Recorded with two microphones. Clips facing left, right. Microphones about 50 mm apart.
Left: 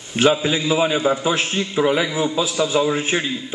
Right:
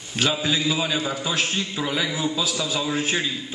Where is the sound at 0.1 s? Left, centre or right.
Left.